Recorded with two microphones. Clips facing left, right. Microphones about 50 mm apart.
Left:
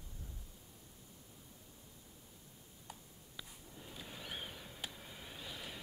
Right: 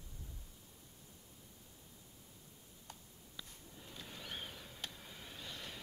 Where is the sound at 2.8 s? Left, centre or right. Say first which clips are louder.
Left 2 dB; centre.